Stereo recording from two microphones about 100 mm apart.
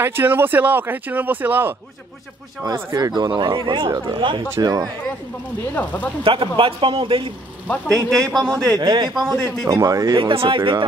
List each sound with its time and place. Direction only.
0.0 s speech: 20° right (ahead or behind)
2.7 s speech: 35° right (ahead or behind); by 4.4 s 50° right (ahead or behind)
4.6 s speech: 40° right (ahead or behind)
6.2 s a man's voice: 60° right (ahead or behind)
8.1 s speech: 5° left (ahead or behind)
8.7 s speech: 50° right (ahead or behind)
9.3 s speech: centre (ahead or behind)
9.7 s speech: 35° right (ahead or behind)
10.1 s a man's voice: 60° right (ahead or behind)